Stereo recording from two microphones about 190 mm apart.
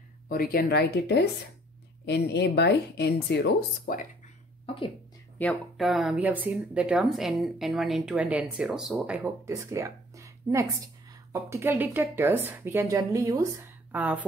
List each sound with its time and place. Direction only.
0.3 s speech: 50° left (ahead or behind)
5.4 s speech: 5° left (ahead or behind)